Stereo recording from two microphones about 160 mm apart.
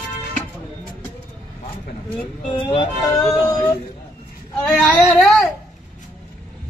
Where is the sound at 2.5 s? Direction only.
35° left (ahead or behind).